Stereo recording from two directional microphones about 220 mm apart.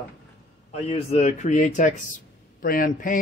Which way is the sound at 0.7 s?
30° left (ahead or behind).